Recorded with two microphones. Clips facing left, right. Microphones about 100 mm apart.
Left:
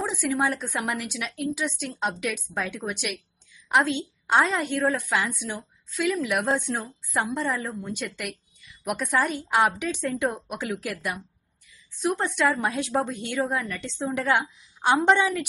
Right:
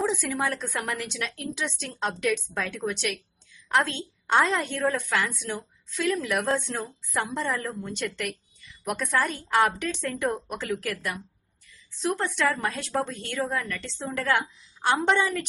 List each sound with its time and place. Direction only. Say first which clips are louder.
0.0 s a woman's voice: left 1 dB; centre (ahead or behind)
12.5 s a woman's voice: left 3 dB; 15° left (ahead or behind)
13.4 s a woman's voice: left 2 dB; centre (ahead or behind)
13.7 s a woman's voice: left 1 dB; 15° left (ahead or behind)
13.9 s a woman's voice: left 3 dB; centre (ahead or behind)
14.3 s a woman's voice: left 2 dB; 20° left (ahead or behind)
15.0 s a woman's voice: left 4 dB; centre (ahead or behind)